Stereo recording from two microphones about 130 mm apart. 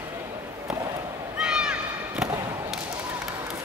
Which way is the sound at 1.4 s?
5° right (ahead or behind).